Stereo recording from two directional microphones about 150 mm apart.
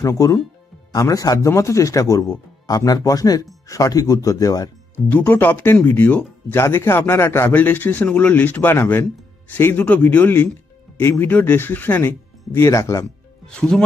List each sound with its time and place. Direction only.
0.0 s speech: 20° left (ahead or behind)
4.9 s speech: 10° left (ahead or behind)
13.5 s speech: 5° left (ahead or behind)